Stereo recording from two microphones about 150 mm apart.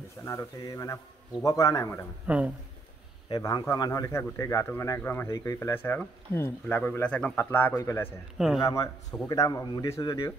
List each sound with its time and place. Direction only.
0.2 s a man's voice: 20° left (ahead or behind)
2.2 s speech: 10° right (ahead or behind)
3.3 s a man's voice: 30° left (ahead or behind)